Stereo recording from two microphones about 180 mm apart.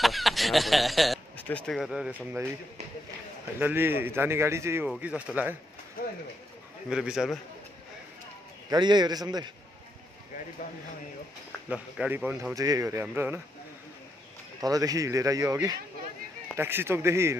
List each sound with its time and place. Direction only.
0.0 s speech: centre (ahead or behind)
3.5 s speech: 10° right (ahead or behind)
6.9 s a man's voice: 5° right (ahead or behind)
8.6 s speech: 25° right (ahead or behind)
11.7 s speech: 5° right (ahead or behind)
14.6 s speech: 20° right (ahead or behind)